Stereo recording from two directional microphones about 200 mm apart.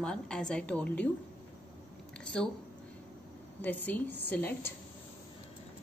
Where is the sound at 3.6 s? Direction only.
10° left (ahead or behind).